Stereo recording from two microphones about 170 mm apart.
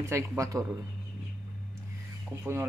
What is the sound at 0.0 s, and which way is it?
Speech, 15° right (ahead or behind).